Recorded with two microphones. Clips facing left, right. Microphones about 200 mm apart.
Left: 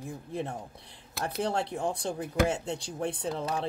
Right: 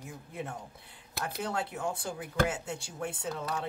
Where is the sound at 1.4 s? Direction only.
30° left (ahead or behind).